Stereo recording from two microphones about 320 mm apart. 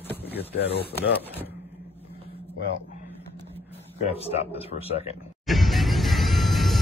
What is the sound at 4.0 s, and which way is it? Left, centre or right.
Speech, centre.